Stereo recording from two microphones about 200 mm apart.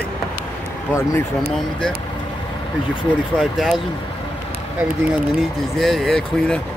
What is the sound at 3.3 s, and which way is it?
Speech, centre (ahead or behind).